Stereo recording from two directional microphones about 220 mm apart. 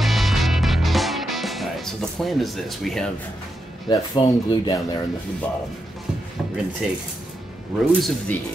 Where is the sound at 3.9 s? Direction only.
20° left (ahead or behind).